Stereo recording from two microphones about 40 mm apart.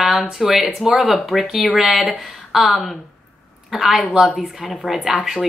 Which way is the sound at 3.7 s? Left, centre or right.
Centre.